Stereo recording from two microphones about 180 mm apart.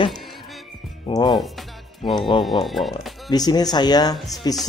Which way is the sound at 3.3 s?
20° left (ahead or behind).